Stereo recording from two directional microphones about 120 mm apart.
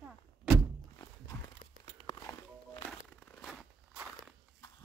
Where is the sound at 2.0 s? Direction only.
35° left (ahead or behind).